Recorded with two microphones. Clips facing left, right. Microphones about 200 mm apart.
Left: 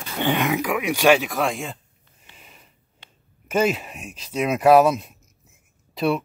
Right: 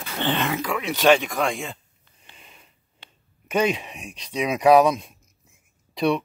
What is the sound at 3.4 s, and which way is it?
Speech, 5° left (ahead or behind).